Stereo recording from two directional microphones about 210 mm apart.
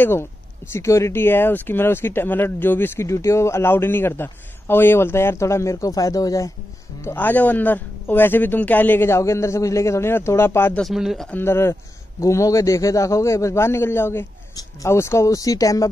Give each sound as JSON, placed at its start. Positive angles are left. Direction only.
{"t": 0.0, "sound": "speech", "side_deg": 10}